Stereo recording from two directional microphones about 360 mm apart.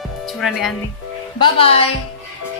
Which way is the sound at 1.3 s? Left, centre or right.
Centre.